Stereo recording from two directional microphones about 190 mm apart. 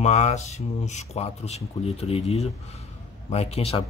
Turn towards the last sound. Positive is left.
turn(degrees=30)  # may be behind; listen again after turning